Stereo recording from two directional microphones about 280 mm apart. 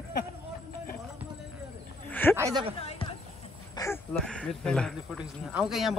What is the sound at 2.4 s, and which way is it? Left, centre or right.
Speech, centre.